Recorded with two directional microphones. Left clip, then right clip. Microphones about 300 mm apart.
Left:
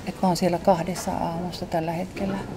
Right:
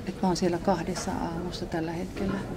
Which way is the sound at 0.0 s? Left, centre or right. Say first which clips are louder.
Left 4 dB; left.